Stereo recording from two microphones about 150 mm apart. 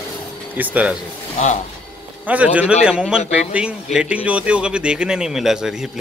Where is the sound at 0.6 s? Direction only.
10° right (ahead or behind).